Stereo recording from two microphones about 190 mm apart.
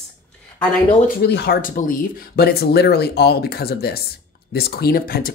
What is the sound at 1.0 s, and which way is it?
Speech, 55° left (ahead or behind).